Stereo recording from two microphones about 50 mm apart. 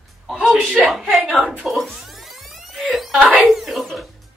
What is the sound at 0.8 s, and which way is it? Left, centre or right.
A woman's voice, centre.